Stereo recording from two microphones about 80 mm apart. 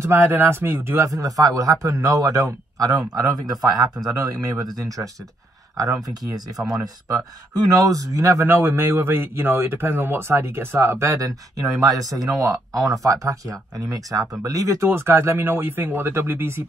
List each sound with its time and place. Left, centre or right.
0.0 s speech: right
8.5 s speech: right